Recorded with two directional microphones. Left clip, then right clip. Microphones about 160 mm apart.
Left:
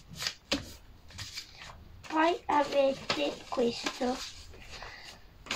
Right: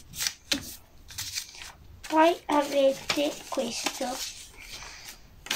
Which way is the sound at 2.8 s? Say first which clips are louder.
Right 6 dB; 40° right (ahead or behind).